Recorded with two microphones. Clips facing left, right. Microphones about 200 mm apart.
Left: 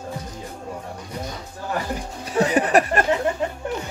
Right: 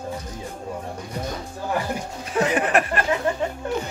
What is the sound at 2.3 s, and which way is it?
Speech, 35° left (ahead or behind).